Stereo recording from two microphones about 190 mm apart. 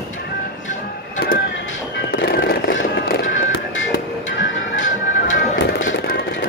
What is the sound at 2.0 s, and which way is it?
Music, 60° left (ahead or behind).